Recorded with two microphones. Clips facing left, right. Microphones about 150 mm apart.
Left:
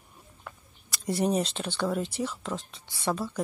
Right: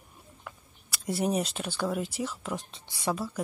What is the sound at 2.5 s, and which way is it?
Speech, 20° right (ahead or behind).